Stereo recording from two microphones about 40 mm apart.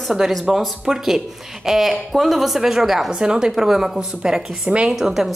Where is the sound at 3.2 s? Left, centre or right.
Centre.